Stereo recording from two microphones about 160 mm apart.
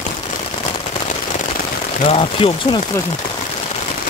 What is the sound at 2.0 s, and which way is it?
Speech, 35° left (ahead or behind).